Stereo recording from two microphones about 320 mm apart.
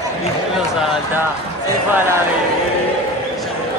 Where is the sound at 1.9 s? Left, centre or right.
Centre.